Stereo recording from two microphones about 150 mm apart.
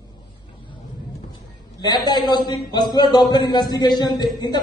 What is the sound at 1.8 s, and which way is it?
Speech, 30° left (ahead or behind).